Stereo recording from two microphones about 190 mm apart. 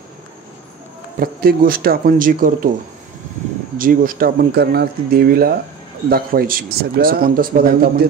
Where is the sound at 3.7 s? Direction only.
45° right (ahead or behind).